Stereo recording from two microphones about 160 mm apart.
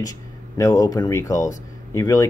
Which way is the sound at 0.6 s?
20° left (ahead or behind).